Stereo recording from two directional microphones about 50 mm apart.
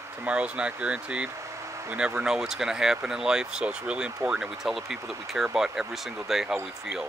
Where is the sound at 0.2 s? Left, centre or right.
Right.